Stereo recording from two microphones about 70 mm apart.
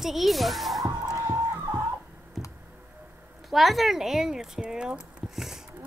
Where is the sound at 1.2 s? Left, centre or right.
Right.